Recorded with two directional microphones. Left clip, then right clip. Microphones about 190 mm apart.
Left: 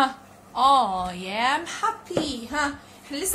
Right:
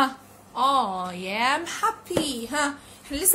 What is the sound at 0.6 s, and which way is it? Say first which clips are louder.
A woman's voice: left 3 dB; centre (ahead or behind).